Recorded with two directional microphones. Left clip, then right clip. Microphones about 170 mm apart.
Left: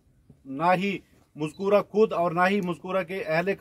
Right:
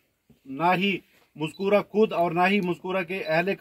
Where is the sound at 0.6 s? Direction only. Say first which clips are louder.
Even; 15° left (ahead or behind).